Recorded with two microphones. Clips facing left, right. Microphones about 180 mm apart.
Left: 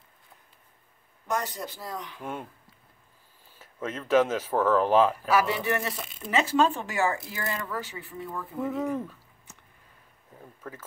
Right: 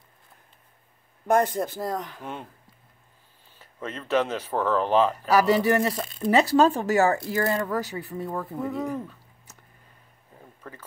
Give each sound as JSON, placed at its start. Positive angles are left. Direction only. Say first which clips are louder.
{"t": 1.2, "sound": "speech", "louder": "right 9 dB", "side_deg": -55}
{"t": 3.5, "sound": "speech", "louder": "left 1 dB", "side_deg": 5}
{"t": 5.3, "sound": "speech", "louder": "right 5 dB", "side_deg": -40}
{"t": 8.6, "sound": "speech", "louder": "left 4 dB", "side_deg": 5}